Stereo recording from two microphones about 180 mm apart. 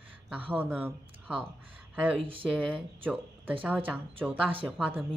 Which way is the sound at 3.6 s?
10° right (ahead or behind).